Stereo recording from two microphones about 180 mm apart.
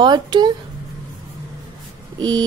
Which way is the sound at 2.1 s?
25° right (ahead or behind).